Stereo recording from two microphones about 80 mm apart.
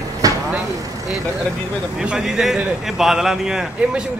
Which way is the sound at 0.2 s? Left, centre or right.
Right.